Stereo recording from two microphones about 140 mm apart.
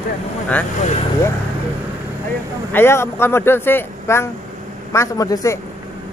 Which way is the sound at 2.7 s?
20° left (ahead or behind).